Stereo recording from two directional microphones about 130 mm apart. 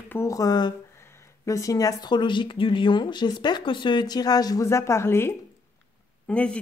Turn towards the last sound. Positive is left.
turn(degrees=10)  # may be behind; listen again after turning